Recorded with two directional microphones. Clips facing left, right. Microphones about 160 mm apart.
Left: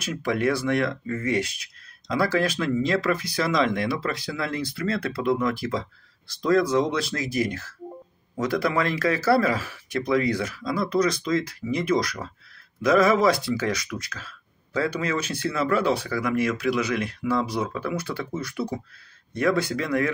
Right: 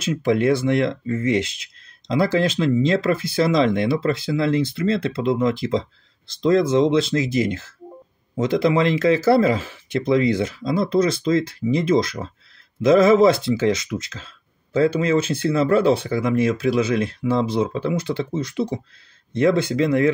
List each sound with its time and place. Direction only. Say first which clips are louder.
0.0 s speech: right 5 dB; 25° right (ahead or behind)